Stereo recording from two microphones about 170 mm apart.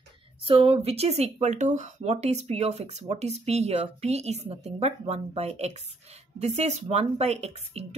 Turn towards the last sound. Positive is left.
turn(degrees=-40)  # may be behind; listen again after turning